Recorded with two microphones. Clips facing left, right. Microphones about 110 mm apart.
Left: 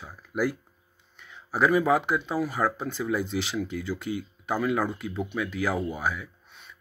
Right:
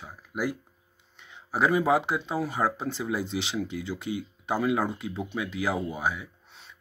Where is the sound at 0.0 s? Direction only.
15° right (ahead or behind).